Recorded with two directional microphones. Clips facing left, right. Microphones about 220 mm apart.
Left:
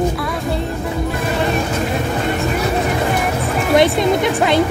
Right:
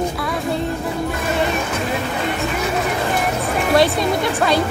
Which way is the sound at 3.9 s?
20° left (ahead or behind).